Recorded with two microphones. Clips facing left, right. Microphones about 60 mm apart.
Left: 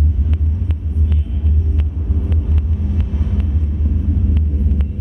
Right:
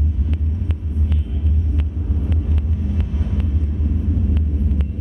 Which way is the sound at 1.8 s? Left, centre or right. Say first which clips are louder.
Left 1 dB; centre.